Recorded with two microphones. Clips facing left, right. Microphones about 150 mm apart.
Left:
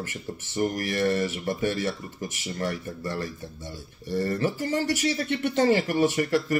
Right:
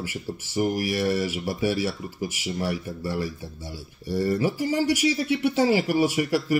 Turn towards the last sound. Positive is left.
turn(degrees=-10)  # may be behind; listen again after turning